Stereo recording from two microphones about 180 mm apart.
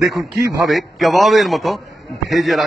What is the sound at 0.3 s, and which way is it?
A man's voice, centre (ahead or behind).